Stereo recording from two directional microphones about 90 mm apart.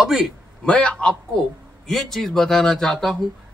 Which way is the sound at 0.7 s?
10° left (ahead or behind).